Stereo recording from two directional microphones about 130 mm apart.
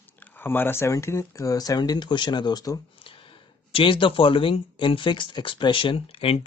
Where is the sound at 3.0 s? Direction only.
40° left (ahead or behind).